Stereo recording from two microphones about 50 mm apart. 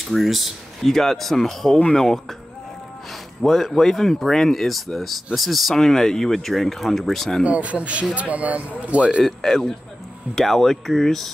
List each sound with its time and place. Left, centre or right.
0.0 s speech: centre
3.4 s speech: centre
7.4 s speech: right
9.2 s speech: centre